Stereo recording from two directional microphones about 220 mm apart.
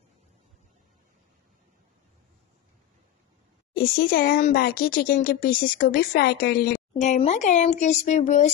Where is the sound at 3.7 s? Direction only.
40° left (ahead or behind).